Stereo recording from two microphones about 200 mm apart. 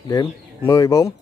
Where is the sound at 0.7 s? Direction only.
15° left (ahead or behind).